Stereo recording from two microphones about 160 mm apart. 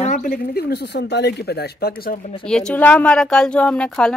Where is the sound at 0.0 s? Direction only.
55° left (ahead or behind); by 2.1 s 70° left (ahead or behind).